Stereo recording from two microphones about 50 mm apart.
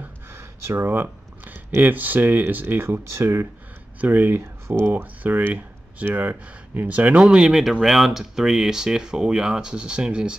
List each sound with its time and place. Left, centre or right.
0.3 s a sound: right
1.8 s speech: right
3.1 s speech: right
4.0 s speech: right
4.6 s speech: right
4.9 s speech: right
7.2 s speech: centre
7.8 s speech: centre